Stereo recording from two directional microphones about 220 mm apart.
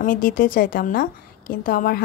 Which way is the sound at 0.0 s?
40° left (ahead or behind).